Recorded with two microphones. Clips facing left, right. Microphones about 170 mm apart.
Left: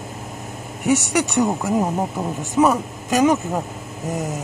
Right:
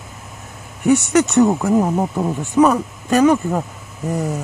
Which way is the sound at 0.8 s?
15° left (ahead or behind).